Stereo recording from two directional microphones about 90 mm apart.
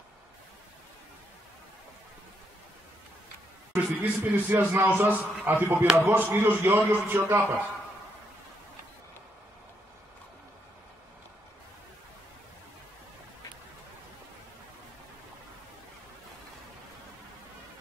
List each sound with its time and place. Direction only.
3.7 s speech: 20° right (ahead or behind)